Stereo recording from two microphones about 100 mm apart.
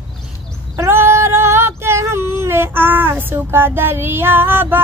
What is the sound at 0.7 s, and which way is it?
Female singing, 25° right (ahead or behind).